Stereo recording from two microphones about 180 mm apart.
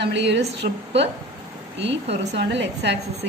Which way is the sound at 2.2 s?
70° right (ahead or behind).